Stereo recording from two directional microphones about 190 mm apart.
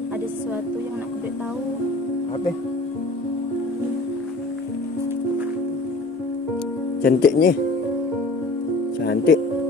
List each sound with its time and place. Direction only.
7.0 s speech: 50° left (ahead or behind)
9.0 s speech: 55° left (ahead or behind)